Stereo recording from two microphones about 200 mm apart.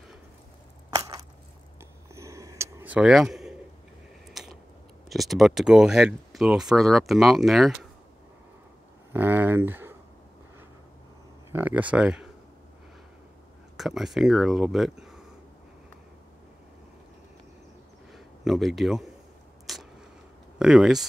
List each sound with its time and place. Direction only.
0.8 s biting: 20° right (ahead or behind)
2.1 s a sound: 15° right (ahead or behind)
5.1 s speech: centre (ahead or behind)
9.1 s speech: 10° right (ahead or behind)
11.5 s speech: 10° right (ahead or behind)
13.7 s speech: centre (ahead or behind)
18.1 s a man's voice: centre (ahead or behind)
19.6 s a sound: centre (ahead or behind)
20.5 s speech: 5° right (ahead or behind)